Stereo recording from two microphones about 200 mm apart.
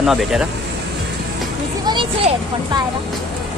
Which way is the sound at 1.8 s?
25° right (ahead or behind).